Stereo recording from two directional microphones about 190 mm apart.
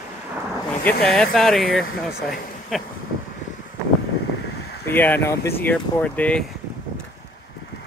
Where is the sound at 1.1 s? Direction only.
Centre (ahead or behind).